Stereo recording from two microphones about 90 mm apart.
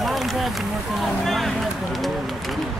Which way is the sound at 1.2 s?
Centre (ahead or behind).